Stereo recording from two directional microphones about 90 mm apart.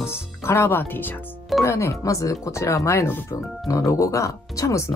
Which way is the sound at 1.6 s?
35° left (ahead or behind).